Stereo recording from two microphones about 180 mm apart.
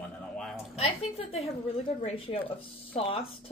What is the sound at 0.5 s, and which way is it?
A woman's voice, 35° left (ahead or behind).